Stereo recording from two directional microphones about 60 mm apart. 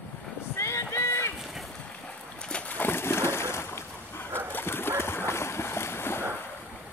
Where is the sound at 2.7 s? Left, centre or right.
Left.